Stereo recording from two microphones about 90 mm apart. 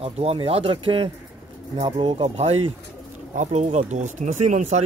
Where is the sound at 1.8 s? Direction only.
70° right (ahead or behind).